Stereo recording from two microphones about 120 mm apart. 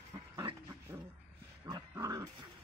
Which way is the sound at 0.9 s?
20° right (ahead or behind).